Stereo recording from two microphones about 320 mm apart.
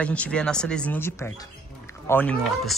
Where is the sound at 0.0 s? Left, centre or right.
Centre.